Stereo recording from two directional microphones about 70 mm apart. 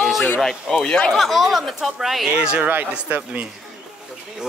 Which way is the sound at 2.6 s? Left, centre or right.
Right.